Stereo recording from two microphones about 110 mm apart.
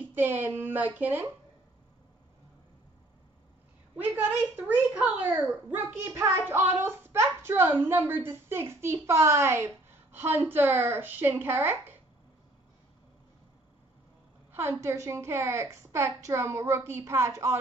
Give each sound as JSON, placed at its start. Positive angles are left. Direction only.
{"t": 0.1, "sound": "a child's voice", "side_deg": -20}
{"t": 3.9, "sound": "a woman's voice", "side_deg": -15}
{"t": 14.8, "sound": "a child's voice", "side_deg": -25}